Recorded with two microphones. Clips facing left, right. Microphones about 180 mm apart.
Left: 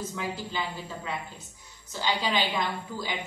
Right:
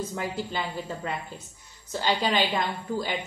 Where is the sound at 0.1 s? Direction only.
50° right (ahead or behind).